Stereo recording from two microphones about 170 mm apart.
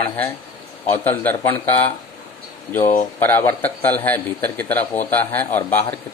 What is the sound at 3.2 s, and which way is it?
A man's voice, 15° left (ahead or behind).